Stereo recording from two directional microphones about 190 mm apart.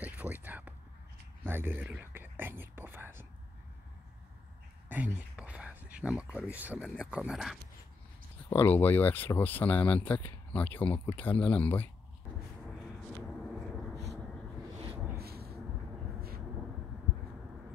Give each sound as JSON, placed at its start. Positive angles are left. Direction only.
{"t": 0.0, "sound": "whispering", "side_deg": -10}
{"t": 4.8, "sound": "speech", "side_deg": -10}
{"t": 8.5, "sound": "speech", "side_deg": 10}
{"t": 13.5, "sound": "vehicle", "side_deg": -5}
{"t": 15.1, "sound": "a sound", "side_deg": -55}